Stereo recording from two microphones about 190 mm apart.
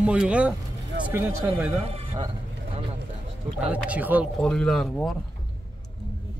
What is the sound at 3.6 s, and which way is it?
Speech, 5° right (ahead or behind).